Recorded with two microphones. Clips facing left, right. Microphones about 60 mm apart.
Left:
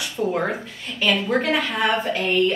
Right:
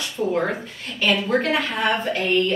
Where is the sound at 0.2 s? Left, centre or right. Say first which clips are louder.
Even; centre.